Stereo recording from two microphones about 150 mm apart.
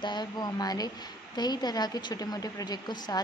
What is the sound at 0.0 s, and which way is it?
A woman's voice, 30° left (ahead or behind).